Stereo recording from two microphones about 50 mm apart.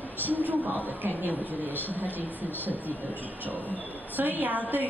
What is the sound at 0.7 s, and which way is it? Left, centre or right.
Speech, right.